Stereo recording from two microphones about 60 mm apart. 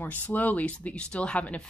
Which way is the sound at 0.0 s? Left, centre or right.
Left.